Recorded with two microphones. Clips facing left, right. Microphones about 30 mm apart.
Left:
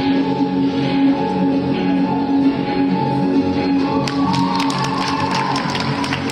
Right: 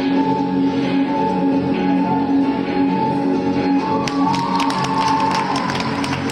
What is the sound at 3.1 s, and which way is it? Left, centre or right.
Music, left.